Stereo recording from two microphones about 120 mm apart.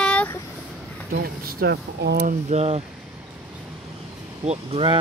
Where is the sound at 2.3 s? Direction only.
65° right (ahead or behind).